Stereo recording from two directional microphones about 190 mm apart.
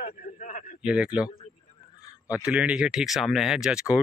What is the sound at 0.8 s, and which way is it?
Speech, 5° right (ahead or behind).